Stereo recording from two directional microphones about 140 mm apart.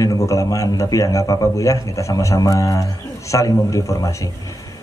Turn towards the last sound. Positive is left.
turn(degrees=20)  # may be behind; listen again after turning